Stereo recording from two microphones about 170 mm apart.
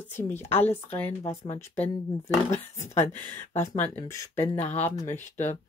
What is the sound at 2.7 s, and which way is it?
Speech, 40° left (ahead or behind).